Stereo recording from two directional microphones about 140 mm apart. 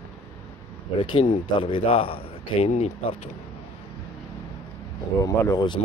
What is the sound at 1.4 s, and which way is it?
A man's voice, 40° left (ahead or behind).